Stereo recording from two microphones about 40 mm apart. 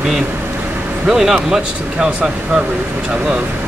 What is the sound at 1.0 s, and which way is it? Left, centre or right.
Speech, centre.